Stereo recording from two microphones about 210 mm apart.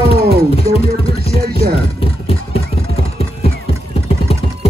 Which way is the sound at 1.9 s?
25° left (ahead or behind).